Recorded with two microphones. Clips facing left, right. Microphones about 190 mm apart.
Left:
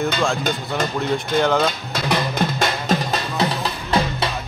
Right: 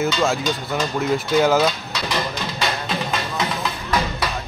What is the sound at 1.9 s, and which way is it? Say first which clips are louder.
Music: left 3 dB; 55° left (ahead or behind).